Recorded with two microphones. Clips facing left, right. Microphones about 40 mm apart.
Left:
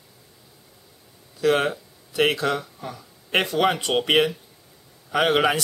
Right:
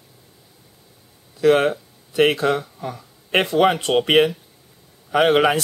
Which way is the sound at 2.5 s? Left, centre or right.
Centre.